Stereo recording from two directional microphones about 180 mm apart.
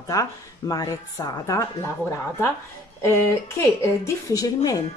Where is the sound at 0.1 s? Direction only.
20° left (ahead or behind).